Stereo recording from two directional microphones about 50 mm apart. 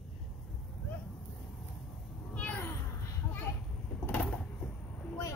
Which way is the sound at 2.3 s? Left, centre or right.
Left.